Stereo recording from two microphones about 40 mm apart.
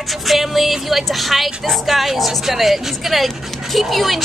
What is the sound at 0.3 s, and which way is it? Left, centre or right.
Speech, centre.